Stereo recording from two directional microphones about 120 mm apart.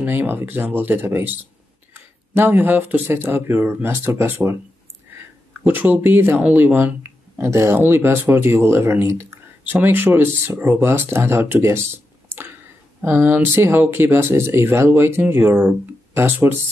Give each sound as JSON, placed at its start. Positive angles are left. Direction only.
{"t": 0.0, "sound": "speech", "side_deg": -20}
{"t": 2.3, "sound": "speech", "side_deg": -15}
{"t": 5.6, "sound": "speech", "side_deg": -15}
{"t": 12.3, "sound": "a sound", "side_deg": -20}
{"t": 13.0, "sound": "speech", "side_deg": -15}